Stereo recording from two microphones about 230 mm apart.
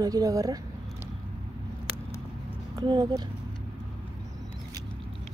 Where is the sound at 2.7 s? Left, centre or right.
Centre.